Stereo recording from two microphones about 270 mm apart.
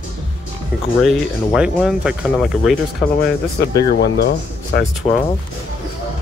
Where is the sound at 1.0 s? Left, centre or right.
Centre.